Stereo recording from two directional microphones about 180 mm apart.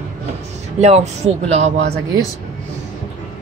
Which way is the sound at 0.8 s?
35° right (ahead or behind).